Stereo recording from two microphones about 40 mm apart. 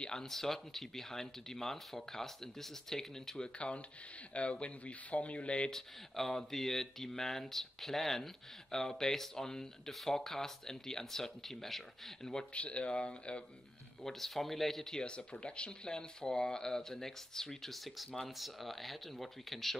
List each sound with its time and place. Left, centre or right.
0.0 s a sound: centre
0.3 s speech: centre
3.5 s speech: left
5.7 s speech: centre
12.5 s speech: left
14.0 s speech: centre
15.0 s speech: left; by 19.8 s centre